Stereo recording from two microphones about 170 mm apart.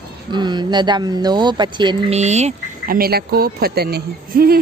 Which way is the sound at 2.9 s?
65° right (ahead or behind).